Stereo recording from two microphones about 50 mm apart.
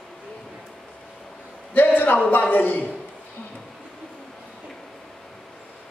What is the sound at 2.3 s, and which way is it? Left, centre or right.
Speech, left.